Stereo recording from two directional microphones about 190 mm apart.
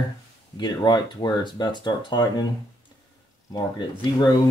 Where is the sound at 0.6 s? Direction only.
25° left (ahead or behind).